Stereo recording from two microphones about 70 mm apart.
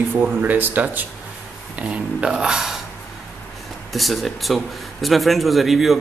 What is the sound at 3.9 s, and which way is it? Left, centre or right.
A man's voice, centre.